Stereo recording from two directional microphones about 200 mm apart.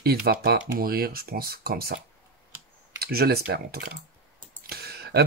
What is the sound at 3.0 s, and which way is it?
Speech, 50° right (ahead or behind).